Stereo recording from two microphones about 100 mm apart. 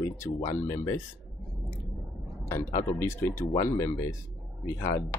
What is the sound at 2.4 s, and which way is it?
Speech, 30° left (ahead or behind).